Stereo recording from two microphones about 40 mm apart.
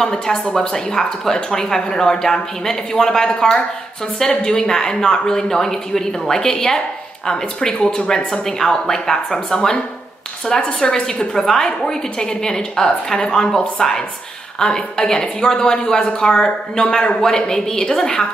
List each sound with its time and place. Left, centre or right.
0.6 s a woman's voice: centre